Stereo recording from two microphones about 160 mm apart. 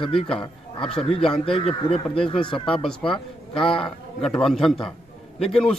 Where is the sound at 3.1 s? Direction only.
5° left (ahead or behind).